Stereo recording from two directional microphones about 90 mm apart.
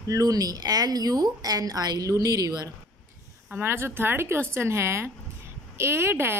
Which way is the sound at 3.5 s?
25° right (ahead or behind).